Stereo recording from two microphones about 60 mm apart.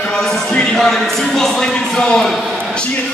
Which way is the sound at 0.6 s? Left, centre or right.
Centre.